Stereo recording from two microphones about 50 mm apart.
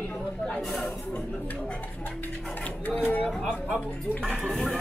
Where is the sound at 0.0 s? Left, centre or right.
Left.